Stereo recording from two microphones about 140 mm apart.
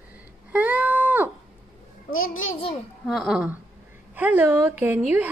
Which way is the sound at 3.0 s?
Centre (ahead or behind).